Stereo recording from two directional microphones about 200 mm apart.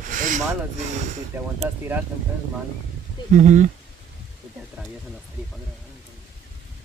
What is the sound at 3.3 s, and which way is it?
Speech, 35° right (ahead or behind).